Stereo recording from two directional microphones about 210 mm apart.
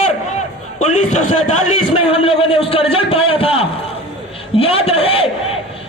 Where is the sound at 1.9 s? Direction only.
25° left (ahead or behind).